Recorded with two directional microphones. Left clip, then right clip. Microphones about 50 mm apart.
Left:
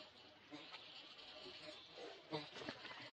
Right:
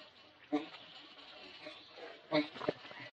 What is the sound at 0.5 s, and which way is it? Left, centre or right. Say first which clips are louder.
Goat: right 19 dB; right.